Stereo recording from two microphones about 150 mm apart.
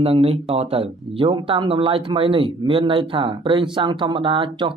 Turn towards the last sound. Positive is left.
turn(degrees=-35)  # may be behind; listen again after turning